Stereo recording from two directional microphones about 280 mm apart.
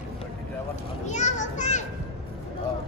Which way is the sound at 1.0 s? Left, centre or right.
Left.